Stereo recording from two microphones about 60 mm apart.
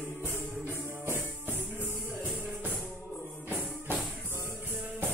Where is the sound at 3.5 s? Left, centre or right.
Right.